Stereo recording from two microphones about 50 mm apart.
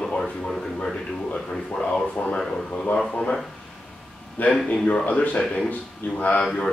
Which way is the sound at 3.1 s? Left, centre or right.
Centre.